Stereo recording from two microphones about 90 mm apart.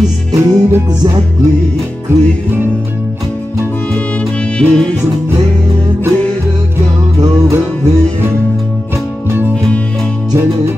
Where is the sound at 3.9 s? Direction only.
15° left (ahead or behind).